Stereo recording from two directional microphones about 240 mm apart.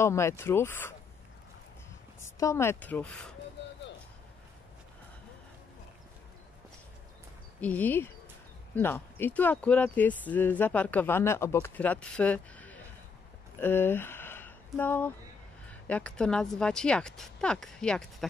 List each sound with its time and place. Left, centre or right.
0.0 s speech: centre
2.3 s speech: centre
3.6 s a sound: left
7.6 s speech: centre